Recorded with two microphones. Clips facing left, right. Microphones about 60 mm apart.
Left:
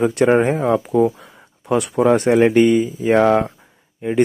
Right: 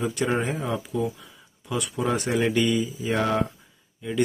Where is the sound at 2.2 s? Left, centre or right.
Left.